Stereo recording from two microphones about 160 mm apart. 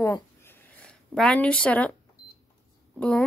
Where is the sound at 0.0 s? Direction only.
10° left (ahead or behind).